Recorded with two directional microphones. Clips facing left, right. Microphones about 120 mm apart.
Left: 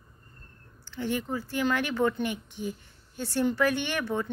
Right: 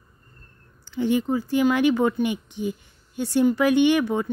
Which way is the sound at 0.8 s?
15° right (ahead or behind).